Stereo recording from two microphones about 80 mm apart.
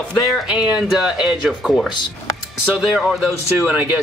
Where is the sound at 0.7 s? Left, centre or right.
Centre.